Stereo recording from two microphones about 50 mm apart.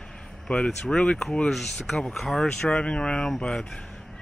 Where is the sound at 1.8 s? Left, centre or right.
Centre.